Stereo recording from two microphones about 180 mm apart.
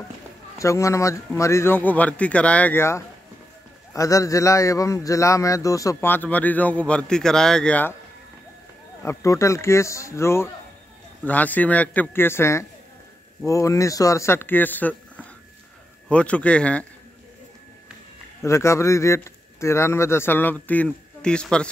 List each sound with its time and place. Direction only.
0.6 s speech: 15° left (ahead or behind)
9.0 s speech: 15° left (ahead or behind)
18.4 s speech: 15° left (ahead or behind)